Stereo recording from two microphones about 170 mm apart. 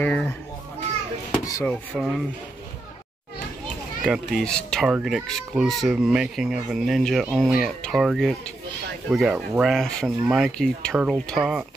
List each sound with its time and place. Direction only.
0.0 s a child's voice: 10° left (ahead or behind)
1.3 s a sound: 20° left (ahead or behind)
1.7 s speech: 5° left (ahead or behind)
4.0 s speech: centre (ahead or behind)